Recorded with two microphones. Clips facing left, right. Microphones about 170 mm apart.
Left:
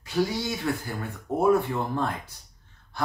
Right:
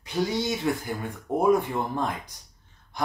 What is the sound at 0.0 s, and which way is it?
Speech, 20° right (ahead or behind).